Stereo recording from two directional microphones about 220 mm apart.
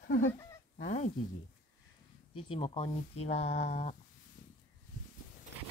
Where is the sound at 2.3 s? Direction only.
25° left (ahead or behind).